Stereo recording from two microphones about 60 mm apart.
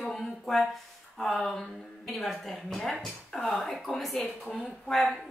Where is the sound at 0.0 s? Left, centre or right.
Centre.